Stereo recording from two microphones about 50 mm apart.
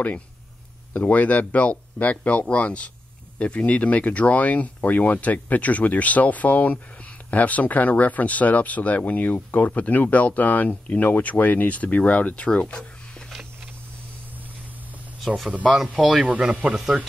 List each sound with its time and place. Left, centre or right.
0.9 s speech: left
15.2 s speech: centre
16.3 s speech: right